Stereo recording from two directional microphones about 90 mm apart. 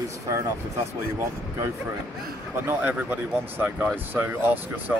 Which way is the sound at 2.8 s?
20° right (ahead or behind).